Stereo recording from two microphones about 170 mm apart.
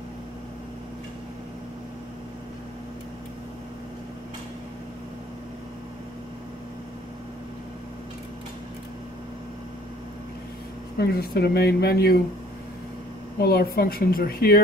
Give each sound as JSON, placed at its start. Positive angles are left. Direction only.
{"t": 11.0, "sound": "speech", "side_deg": 70}
{"t": 13.4, "sound": "speech", "side_deg": 65}